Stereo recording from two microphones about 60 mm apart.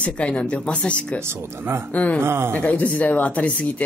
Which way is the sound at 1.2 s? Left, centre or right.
Right.